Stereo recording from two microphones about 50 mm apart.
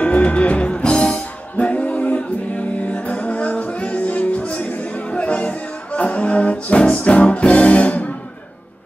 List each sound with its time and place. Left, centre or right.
0.0 s music: left